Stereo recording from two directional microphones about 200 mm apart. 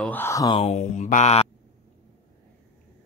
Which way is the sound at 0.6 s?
35° left (ahead or behind).